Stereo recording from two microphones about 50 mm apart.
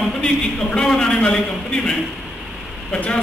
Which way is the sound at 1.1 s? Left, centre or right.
Left.